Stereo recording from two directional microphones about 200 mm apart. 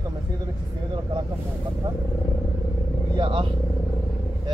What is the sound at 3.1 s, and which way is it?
Speech, 25° right (ahead or behind).